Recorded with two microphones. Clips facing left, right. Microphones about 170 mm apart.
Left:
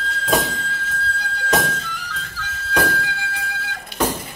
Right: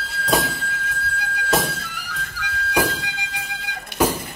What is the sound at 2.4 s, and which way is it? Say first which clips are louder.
Music: even; 15° right (ahead or behind).